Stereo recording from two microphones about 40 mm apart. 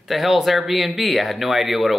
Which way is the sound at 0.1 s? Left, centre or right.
Centre.